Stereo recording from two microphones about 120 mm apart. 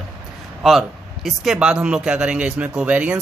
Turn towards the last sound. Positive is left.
turn(degrees=-10)  # may be behind; listen again after turning